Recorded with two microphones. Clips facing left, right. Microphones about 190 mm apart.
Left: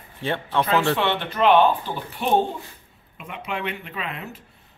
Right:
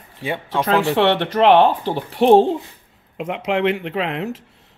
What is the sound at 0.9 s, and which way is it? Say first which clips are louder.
Speech: right 7 dB; 80° right.